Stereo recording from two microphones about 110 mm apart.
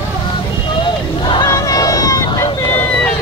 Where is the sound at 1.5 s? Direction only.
30° left (ahead or behind).